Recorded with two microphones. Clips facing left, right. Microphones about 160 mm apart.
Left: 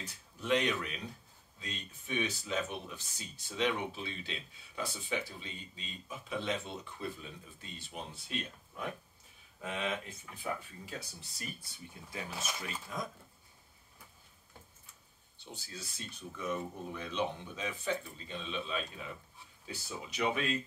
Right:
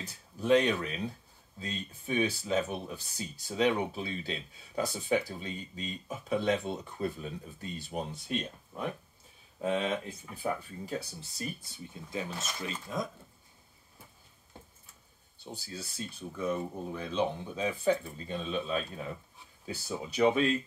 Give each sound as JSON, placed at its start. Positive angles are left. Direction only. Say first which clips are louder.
{"t": 0.4, "sound": "speech", "louder": "right 6 dB", "side_deg": -35}
{"t": 9.6, "sound": "speech", "louder": "right 7 dB", "side_deg": -35}
{"t": 11.7, "sound": "speech", "louder": "right 7 dB", "side_deg": -25}
{"t": 15.4, "sound": "speech", "louder": "right 5 dB", "side_deg": -35}